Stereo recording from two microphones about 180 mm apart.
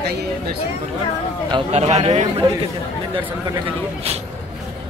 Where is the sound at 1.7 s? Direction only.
40° right (ahead or behind).